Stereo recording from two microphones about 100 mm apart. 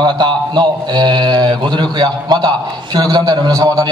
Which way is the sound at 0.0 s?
45° right (ahead or behind).